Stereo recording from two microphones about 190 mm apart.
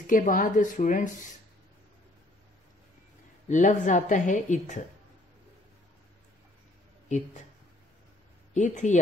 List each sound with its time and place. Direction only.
0.0 s a woman's voice: 45° left (ahead or behind)
3.4 s a woman's voice: 40° left (ahead or behind)
8.5 s a woman's voice: 40° left (ahead or behind)